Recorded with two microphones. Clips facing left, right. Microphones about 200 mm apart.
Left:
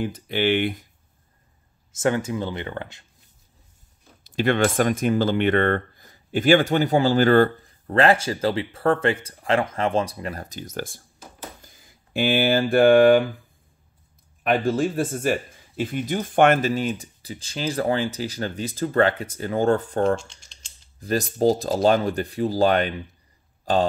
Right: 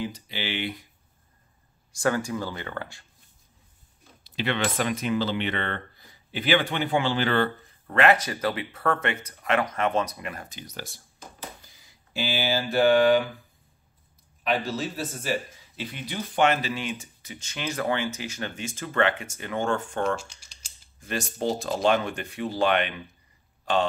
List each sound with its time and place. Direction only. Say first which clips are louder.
0.0 s speech: left 9 dB; 55° left (ahead or behind)
1.9 s speech: left 3 dB; 20° left (ahead or behind)
4.2 s speech: left 7 dB; 45° left (ahead or behind)
14.4 s speech: left 6 dB; 55° left (ahead or behind); by 20.2 s 35° left (ahead or behind)
20.2 s rattle: even; 5° right (ahead or behind)
21.0 s speech: left 8 dB; 35° left (ahead or behind)